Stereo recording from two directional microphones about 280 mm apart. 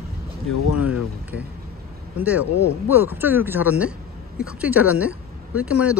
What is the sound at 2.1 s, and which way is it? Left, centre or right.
Speech, centre.